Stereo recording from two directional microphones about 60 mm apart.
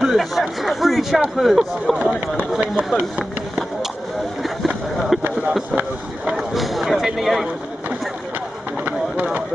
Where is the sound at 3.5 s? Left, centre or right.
Centre.